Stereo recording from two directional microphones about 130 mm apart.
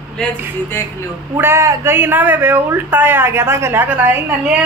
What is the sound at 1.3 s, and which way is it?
A man's voice, 20° right (ahead or behind).